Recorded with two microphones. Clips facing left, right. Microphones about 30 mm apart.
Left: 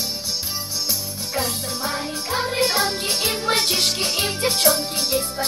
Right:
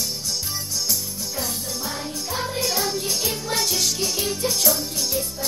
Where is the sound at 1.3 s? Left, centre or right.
Left.